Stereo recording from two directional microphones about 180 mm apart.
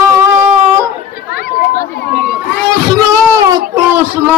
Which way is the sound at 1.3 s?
60° left (ahead or behind).